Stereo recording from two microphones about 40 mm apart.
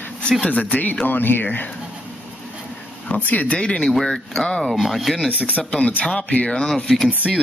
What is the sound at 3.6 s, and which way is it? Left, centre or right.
Speech, left.